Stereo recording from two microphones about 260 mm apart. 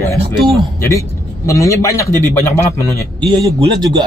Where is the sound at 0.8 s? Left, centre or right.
Centre.